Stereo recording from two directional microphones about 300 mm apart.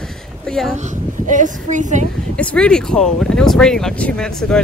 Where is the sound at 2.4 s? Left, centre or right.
Centre.